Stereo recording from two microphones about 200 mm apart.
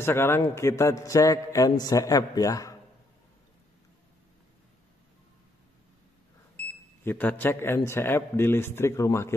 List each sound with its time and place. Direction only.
0.0 s a man's voice: 10° left (ahead or behind)
7.1 s a man's voice: 10° left (ahead or behind)